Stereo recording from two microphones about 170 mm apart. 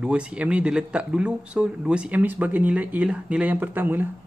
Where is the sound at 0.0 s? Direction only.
5° right (ahead or behind).